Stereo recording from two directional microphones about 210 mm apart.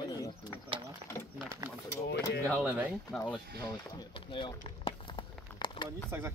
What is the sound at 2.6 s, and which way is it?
Speech, 5° right (ahead or behind).